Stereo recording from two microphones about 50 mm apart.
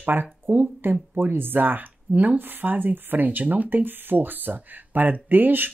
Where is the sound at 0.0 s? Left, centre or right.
Right.